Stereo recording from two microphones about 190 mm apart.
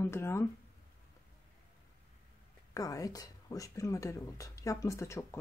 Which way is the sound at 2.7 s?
20° left (ahead or behind).